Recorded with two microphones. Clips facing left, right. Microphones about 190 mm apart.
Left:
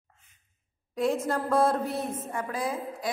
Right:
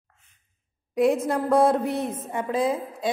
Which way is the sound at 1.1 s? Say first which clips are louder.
Right 5 dB; 15° right (ahead or behind).